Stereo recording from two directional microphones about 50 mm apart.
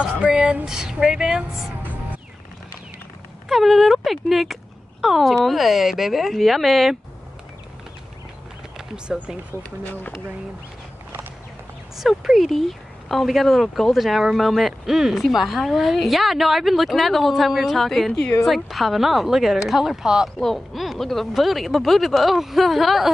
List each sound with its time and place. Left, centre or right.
0.0 s a sound: right
0.7 s a woman's voice: centre
3.4 s speech: centre
8.7 s speech: centre
12.0 s a woman's voice: centre
20.3 s speech: centre